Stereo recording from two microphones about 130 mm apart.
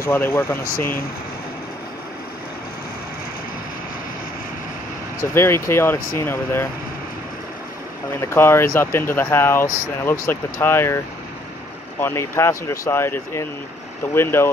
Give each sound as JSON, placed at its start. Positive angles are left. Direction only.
{"t": 0.0, "sound": "speech", "side_deg": 20}
{"t": 5.2, "sound": "speech", "side_deg": 20}
{"t": 8.2, "sound": "speech", "side_deg": 20}
{"t": 12.0, "sound": "speech", "side_deg": 20}